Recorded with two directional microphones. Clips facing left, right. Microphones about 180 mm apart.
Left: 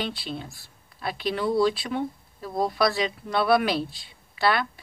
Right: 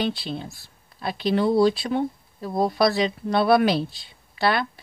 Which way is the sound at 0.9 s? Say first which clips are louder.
Right 5 dB; 35° right (ahead or behind).